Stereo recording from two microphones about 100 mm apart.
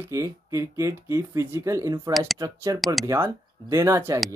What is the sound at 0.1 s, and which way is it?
Speech, 30° right (ahead or behind).